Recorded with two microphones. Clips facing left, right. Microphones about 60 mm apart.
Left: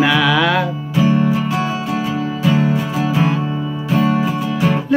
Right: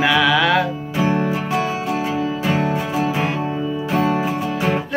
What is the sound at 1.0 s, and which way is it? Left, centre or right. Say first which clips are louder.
Music: left 4 dB; right.